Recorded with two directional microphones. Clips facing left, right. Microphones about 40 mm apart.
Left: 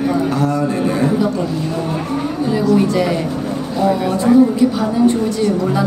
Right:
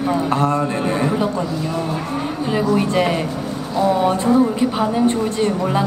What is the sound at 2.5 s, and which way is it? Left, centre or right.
Speech, right.